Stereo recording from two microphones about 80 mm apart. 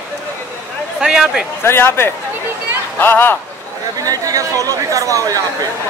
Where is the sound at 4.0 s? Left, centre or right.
Right.